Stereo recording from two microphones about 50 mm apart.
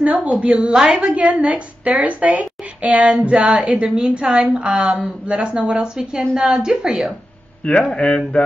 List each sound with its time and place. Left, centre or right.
0.0 s a woman's voice: right
1.0 s a woman's voice: right
7.6 s speech: left